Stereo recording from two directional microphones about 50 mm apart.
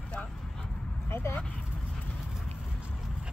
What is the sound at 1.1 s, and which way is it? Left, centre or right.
Speech, left.